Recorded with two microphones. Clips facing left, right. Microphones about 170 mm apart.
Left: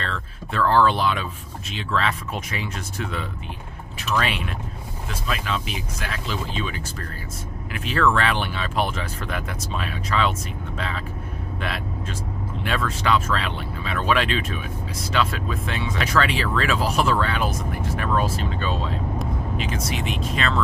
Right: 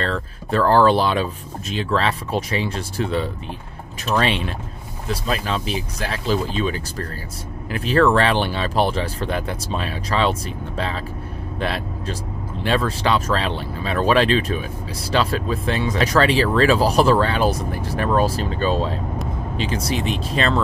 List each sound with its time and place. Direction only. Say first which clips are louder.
0.0 s speech: right 7 dB; 40° right (ahead or behind)